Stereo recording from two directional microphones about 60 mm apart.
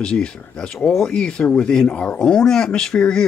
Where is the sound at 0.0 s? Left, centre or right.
Centre.